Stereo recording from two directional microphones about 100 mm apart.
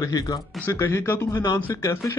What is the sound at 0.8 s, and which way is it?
A man's voice, 25° left (ahead or behind).